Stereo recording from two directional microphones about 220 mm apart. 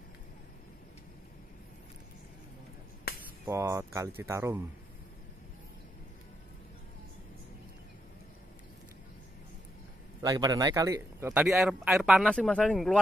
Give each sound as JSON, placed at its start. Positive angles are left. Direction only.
{"t": 3.1, "sound": "finger snapping", "side_deg": 45}
{"t": 3.4, "sound": "speech", "side_deg": -15}
{"t": 10.2, "sound": "speech", "side_deg": -15}